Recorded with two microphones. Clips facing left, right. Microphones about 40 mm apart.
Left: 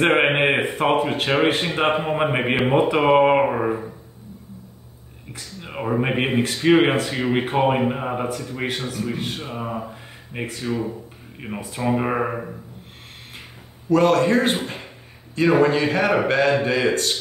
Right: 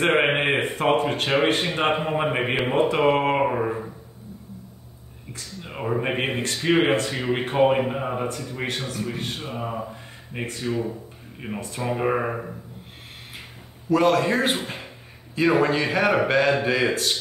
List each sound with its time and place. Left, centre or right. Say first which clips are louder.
0.0 s a man's voice: left 3 dB; left
0.3 s speech: left 3 dB; centre
5.3 s speech: left 2 dB; centre
13.8 s a man's voice: left 3 dB; centre